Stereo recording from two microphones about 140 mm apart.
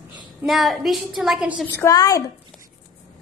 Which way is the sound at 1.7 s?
20° left (ahead or behind).